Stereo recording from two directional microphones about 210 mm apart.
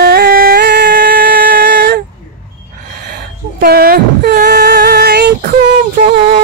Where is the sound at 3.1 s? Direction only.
45° right (ahead or behind).